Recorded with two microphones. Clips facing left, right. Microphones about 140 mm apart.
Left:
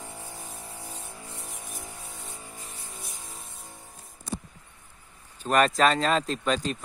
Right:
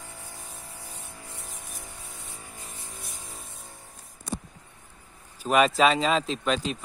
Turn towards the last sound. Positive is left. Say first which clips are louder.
# even
turn(degrees=0)  # may be behind; listen again after turning